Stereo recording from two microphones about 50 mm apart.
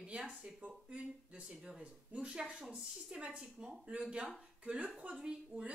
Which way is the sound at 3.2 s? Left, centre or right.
Right.